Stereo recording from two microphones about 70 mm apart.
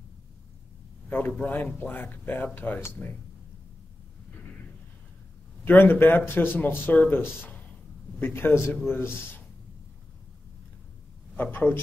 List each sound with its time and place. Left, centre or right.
1.1 s a man's voice: left
5.7 s a man's voice: left
11.3 s speech: left